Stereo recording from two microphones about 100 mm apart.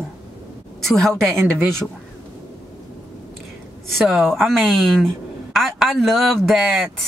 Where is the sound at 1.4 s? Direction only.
25° right (ahead or behind).